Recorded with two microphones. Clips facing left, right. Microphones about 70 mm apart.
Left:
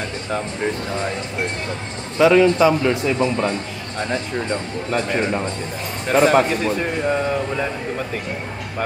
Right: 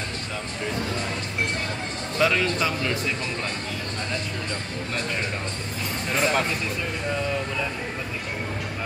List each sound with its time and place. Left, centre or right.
2.1 s a man's voice: centre
6.2 s speech: left